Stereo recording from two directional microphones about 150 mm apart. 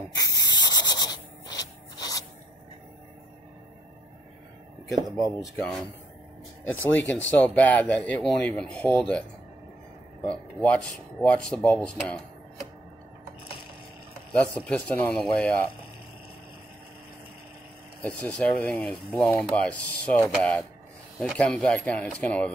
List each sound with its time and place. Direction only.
0.2 s rub: 25° left (ahead or behind)
4.8 s speech: 5° left (ahead or behind)
10.2 s speech: 5° left (ahead or behind)
14.7 s speech: 10° left (ahead or behind)
18.0 s speech: 10° left (ahead or behind)
21.2 s speech: 5° left (ahead or behind)